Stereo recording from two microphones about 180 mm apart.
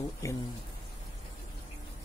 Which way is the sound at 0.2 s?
20° left (ahead or behind).